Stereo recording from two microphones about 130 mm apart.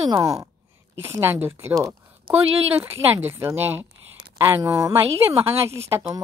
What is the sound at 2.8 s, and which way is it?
A woman's voice, 15° right (ahead or behind).